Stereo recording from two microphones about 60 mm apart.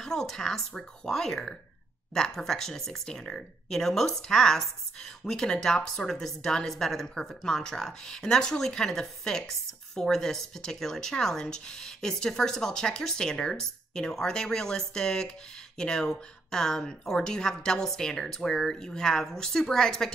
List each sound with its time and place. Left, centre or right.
0.0 s speech: centre